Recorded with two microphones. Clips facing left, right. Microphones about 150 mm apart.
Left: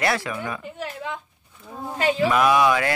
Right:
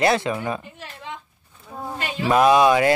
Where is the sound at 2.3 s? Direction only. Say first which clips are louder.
Right 6 dB; 25° right (ahead or behind).